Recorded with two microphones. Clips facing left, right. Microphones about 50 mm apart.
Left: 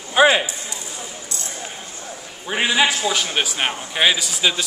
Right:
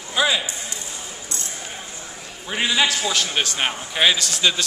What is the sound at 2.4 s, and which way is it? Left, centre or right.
A man's voice, centre.